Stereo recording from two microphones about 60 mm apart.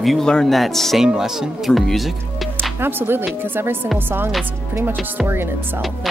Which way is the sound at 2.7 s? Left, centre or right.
Right.